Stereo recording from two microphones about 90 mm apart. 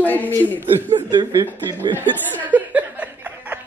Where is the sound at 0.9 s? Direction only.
55° right (ahead or behind).